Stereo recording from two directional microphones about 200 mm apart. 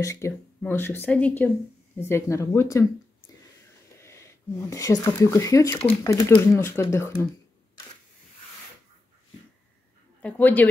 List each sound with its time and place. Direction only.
0.0 s speech: 15° left (ahead or behind)
4.0 s speech: 15° left (ahead or behind)
10.2 s speech: 10° left (ahead or behind)